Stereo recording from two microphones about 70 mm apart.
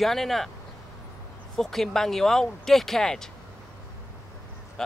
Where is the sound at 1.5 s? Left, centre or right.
Centre.